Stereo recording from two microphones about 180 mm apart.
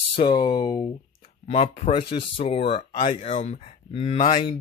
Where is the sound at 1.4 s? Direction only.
40° left (ahead or behind).